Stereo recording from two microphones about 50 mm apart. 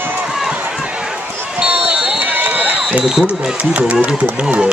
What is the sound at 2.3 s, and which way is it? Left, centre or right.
Run, right.